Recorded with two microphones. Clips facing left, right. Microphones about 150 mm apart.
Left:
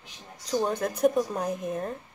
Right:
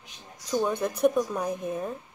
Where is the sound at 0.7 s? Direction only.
45° left (ahead or behind).